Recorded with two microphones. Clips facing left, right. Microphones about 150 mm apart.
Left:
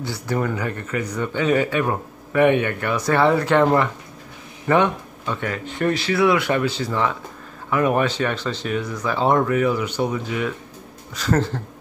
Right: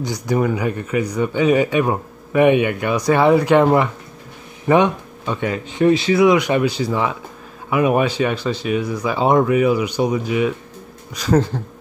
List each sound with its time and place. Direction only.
0.0 s speech: 15° right (ahead or behind)